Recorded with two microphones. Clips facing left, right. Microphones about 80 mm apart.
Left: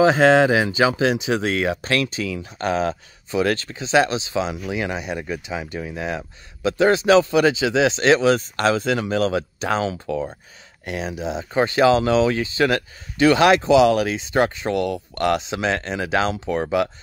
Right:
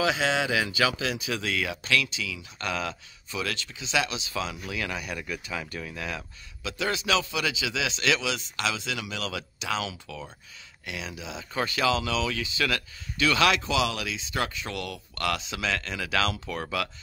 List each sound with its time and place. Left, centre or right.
0.0 s speech: left